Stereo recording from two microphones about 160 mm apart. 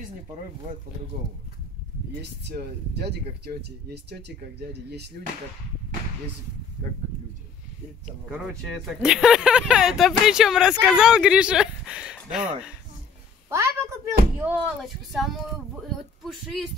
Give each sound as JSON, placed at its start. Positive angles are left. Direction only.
{"t": 2.4, "sound": "speech", "side_deg": -90}
{"t": 8.5, "sound": "speech", "side_deg": 0}
{"t": 13.5, "sound": "a sound", "side_deg": -15}
{"t": 14.4, "sound": "speech", "side_deg": -10}